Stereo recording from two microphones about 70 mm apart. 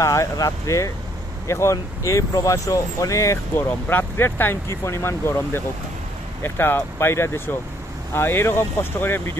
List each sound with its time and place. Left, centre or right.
0.0 s speech: left
3.5 s speech: left